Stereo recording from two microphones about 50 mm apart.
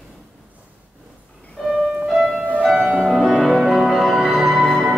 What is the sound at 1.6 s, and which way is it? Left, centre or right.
Music, centre.